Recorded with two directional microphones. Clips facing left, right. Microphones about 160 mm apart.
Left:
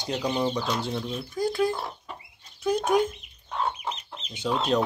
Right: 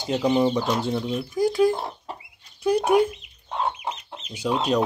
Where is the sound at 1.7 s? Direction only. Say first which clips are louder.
Right 3 dB; 30° right (ahead or behind).